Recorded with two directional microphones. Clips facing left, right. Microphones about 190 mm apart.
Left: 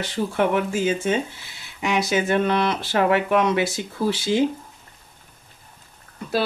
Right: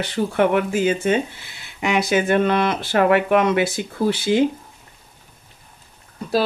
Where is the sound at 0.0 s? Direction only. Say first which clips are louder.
Right 3 dB; 60° right (ahead or behind).